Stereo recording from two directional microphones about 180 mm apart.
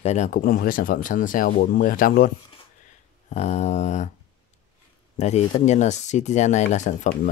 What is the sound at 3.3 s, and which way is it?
Speech, 40° left (ahead or behind).